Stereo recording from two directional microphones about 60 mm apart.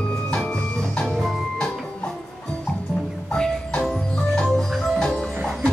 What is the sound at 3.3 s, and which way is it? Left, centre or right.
Music, centre.